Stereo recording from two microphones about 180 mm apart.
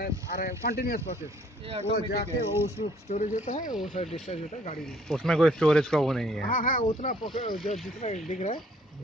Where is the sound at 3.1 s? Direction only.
40° left (ahead or behind).